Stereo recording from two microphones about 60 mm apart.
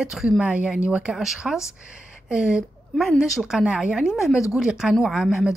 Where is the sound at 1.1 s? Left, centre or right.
Centre.